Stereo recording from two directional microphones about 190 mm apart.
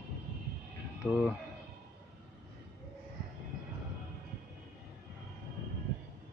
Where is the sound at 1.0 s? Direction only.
10° left (ahead or behind).